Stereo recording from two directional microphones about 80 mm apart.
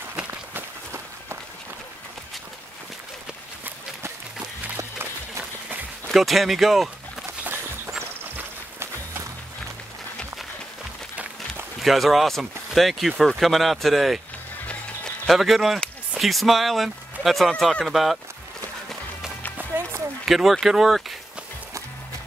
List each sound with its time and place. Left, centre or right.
0.3 s walk: right
6.0 s speech: centre
8.4 s music: right
11.8 s speech: centre
15.2 s speech: centre
20.2 s speech: centre